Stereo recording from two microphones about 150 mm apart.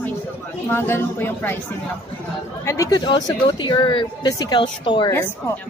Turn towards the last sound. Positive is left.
turn(degrees=35)  # may be behind; listen again after turning